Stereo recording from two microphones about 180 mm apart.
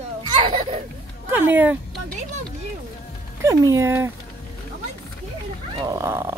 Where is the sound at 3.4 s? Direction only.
15° right (ahead or behind).